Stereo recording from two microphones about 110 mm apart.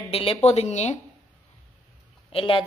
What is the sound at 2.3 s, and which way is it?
Speech, 50° left (ahead or behind).